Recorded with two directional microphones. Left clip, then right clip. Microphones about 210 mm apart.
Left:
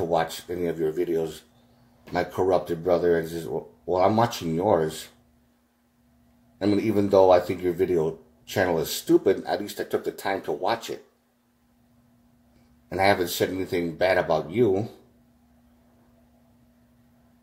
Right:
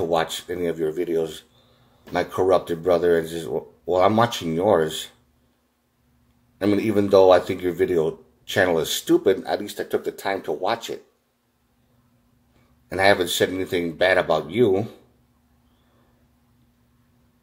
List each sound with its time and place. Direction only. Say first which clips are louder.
0.0 s speech: right 2 dB; 5° right (ahead or behind)
6.6 s speech: right 3 dB; centre (ahead or behind)
7.6 s speech: right 2 dB; 25° left (ahead or behind)
8.5 s speech: right 4 dB; centre (ahead or behind)
13.0 s speech: right 4 dB; centre (ahead or behind)